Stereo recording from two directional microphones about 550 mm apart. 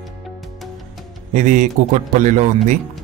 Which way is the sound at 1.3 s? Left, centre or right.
Centre.